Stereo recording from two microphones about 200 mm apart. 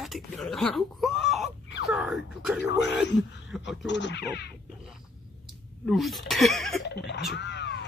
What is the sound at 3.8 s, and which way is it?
Speech, 65° left (ahead or behind).